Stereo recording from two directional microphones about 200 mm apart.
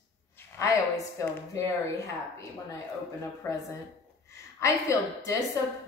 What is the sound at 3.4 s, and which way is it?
A woman's voice, 10° left (ahead or behind).